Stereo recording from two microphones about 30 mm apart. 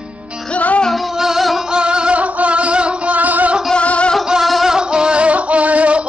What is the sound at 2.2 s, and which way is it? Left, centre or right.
Music, right.